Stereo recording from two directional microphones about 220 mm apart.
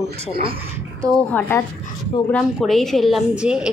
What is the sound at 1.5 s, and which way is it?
A woman's voice, 10° left (ahead or behind).